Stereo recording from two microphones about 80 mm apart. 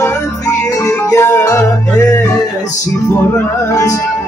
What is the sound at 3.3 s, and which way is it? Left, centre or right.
Music, left.